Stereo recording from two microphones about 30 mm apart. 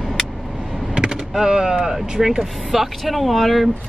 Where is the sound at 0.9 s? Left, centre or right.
Right.